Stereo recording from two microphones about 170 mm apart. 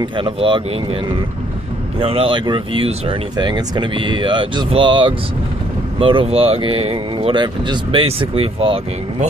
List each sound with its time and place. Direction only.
0.0 s speech: 30° right (ahead or behind)
2.0 s speech: 35° right (ahead or behind)